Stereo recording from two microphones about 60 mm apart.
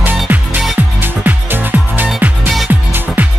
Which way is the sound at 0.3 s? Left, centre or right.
Right.